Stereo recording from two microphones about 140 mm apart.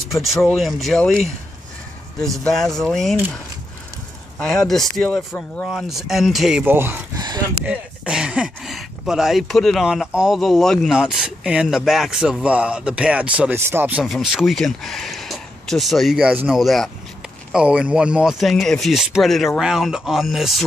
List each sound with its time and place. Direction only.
0.1 s speech: centre (ahead or behind)
2.4 s speech: 5° left (ahead or behind)
4.4 s speech: 5° left (ahead or behind)
6.6 s speech: 15° right (ahead or behind)
7.2 s a sound: 30° right (ahead or behind)
7.6 s speech: 10° right (ahead or behind)
14.0 s speech: centre (ahead or behind)